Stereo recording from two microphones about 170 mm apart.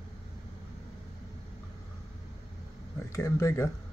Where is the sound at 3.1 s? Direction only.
15° left (ahead or behind).